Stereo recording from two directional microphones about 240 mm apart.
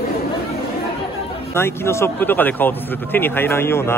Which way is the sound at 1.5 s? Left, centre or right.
Centre.